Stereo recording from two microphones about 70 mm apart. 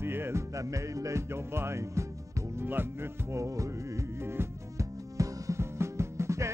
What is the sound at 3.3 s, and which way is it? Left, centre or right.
Music, right.